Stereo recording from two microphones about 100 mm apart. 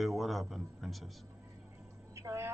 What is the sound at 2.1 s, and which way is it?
Speech, 30° right (ahead or behind).